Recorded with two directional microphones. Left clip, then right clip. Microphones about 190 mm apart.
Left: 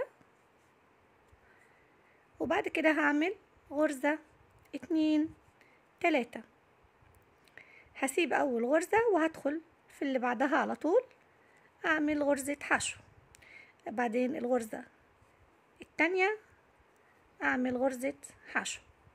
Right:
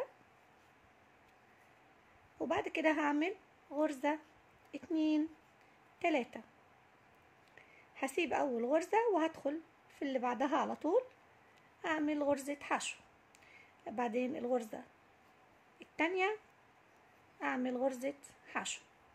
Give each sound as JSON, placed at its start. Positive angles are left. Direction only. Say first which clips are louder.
{"t": 2.3, "sound": "a woman's voice", "louder": "left 5 dB", "side_deg": 30}
{"t": 7.5, "sound": "a woman's voice", "louder": "left 6 dB", "side_deg": 30}
{"t": 17.4, "sound": "a woman's voice", "louder": "left 5 dB", "side_deg": 25}